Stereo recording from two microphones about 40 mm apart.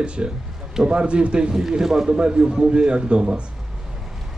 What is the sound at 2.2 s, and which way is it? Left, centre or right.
Speech, right.